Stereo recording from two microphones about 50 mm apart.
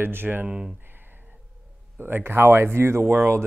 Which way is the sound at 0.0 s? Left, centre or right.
Right.